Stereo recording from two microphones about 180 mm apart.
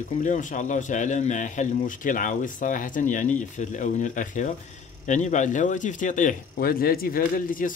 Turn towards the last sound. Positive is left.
turn(degrees=50)  # may be behind; listen again after turning